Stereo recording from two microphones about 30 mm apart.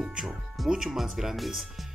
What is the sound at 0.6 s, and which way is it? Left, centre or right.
Speech, right.